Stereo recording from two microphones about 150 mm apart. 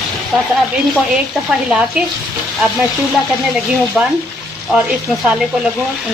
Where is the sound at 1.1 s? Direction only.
5° right (ahead or behind).